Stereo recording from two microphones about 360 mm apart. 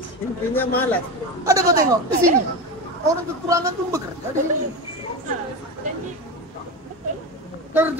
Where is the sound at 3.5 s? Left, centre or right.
Centre.